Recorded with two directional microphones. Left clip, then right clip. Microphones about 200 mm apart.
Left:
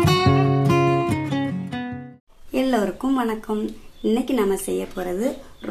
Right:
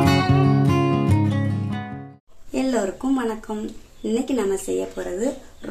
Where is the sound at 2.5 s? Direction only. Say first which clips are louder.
Left 1 dB; 35° left (ahead or behind).